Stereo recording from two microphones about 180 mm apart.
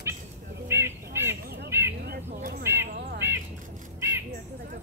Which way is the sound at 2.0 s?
60° right (ahead or behind).